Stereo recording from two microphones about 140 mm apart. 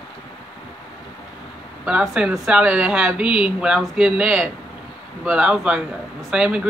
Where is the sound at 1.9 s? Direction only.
5° right (ahead or behind).